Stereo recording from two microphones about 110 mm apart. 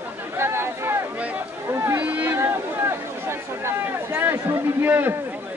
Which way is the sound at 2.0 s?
15° right (ahead or behind).